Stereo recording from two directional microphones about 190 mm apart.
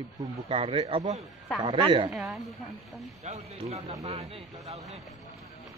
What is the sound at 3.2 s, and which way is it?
Speech, 35° right (ahead or behind).